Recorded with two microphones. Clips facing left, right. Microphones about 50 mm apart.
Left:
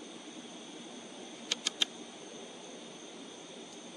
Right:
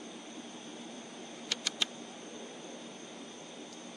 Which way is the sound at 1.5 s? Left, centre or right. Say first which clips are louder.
Even; left.